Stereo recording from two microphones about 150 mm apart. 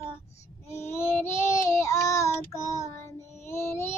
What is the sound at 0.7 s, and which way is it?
Child singing, 20° left (ahead or behind).